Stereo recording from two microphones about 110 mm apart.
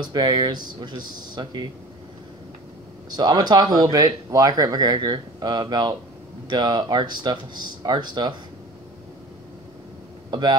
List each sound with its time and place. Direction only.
0.0 s speech: 40° right (ahead or behind)
3.2 s speech: 40° right (ahead or behind)
10.3 s speech: 45° right (ahead or behind)